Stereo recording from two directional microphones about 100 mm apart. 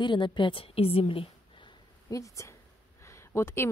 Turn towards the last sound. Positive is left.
turn(degrees=25)  # may be behind; listen again after turning